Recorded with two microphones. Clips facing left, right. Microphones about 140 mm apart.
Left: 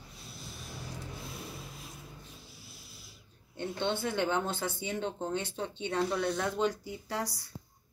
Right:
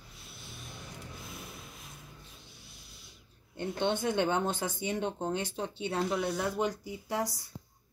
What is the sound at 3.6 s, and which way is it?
Speech, 15° right (ahead or behind).